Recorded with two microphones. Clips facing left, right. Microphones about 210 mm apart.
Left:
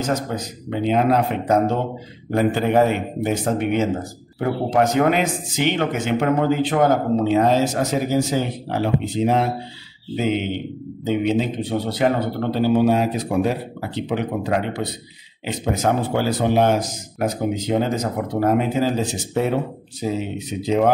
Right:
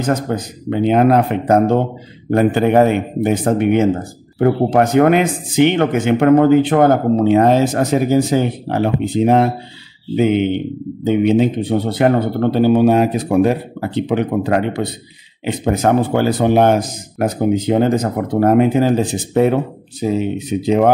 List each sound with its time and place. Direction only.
0.0 s a man's voice: 55° right (ahead or behind)